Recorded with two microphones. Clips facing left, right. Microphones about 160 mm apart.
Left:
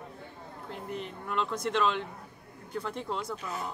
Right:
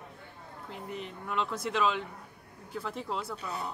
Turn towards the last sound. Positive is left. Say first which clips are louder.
# even
turn(degrees=-35)  # may be behind; listen again after turning